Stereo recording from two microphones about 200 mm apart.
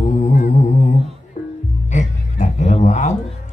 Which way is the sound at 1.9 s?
35° left (ahead or behind).